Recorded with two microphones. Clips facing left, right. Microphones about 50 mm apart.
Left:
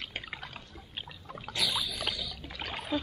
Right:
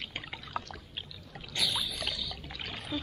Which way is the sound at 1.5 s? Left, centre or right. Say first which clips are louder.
Left 1 dB; centre.